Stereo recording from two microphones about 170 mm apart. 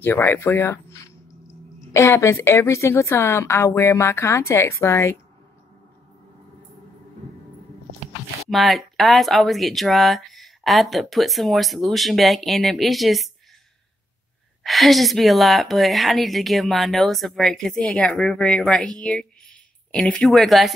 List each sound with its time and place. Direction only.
0.0 s a woman's voice: 10° left (ahead or behind)
8.5 s speech: centre (ahead or behind)
14.6 s a woman's voice: centre (ahead or behind)